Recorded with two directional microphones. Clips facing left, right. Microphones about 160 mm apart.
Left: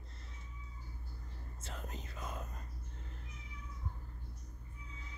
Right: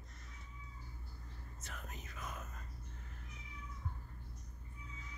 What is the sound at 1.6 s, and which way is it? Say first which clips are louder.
Whispering: left 4 dB; 30° left (ahead or behind).